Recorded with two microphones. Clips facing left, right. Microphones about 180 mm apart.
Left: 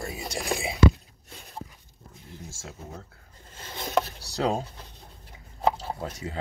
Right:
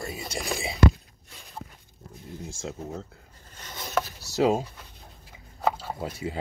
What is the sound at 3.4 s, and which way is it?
Chopping, 30° left (ahead or behind).